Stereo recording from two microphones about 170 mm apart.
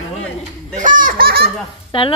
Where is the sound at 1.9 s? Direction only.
30° left (ahead or behind).